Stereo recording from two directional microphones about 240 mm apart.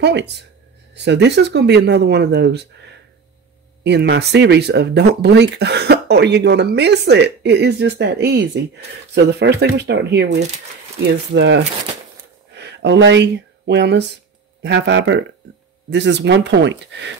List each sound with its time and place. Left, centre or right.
0.0 s speech: right
3.8 s speech: right